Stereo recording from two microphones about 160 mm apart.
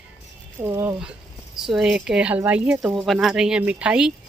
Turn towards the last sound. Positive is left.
turn(degrees=-5)  # may be behind; listen again after turning